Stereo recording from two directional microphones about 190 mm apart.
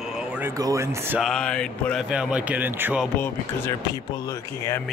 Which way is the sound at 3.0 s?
10° left (ahead or behind).